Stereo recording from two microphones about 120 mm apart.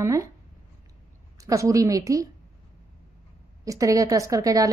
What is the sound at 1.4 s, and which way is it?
Speech, 25° right (ahead or behind).